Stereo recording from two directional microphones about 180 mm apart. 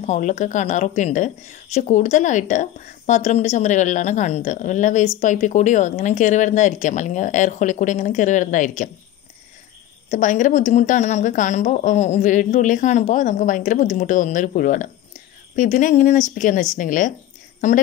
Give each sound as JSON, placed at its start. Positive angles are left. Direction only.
{"t": 0.0, "sound": "speech", "side_deg": 40}
{"t": 10.1, "sound": "speech", "side_deg": 45}